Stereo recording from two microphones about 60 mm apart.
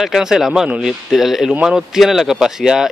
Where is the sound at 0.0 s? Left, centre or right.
Centre.